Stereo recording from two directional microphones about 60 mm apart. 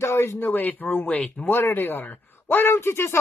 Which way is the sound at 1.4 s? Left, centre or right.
Left.